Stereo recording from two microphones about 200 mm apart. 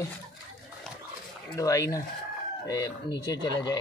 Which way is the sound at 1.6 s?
15° left (ahead or behind).